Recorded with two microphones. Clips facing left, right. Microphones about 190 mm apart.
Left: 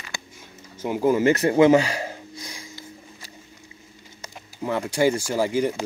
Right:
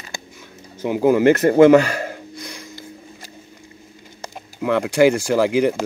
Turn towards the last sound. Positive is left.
turn(degrees=-90)